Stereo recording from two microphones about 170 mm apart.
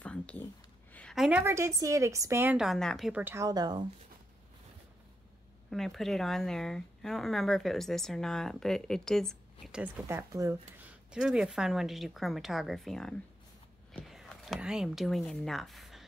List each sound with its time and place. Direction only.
0.0 s a sound: 5° left (ahead or behind)
1.4 s a woman's voice: 15° right (ahead or behind)
2.5 s a woman's voice: centre (ahead or behind)
3.1 s a woman's voice: 10° right (ahead or behind)
5.7 s a woman's voice: centre (ahead or behind)
10.0 s a woman's voice: 15° right (ahead or behind)
10.8 s a woman's voice: 5° right (ahead or behind)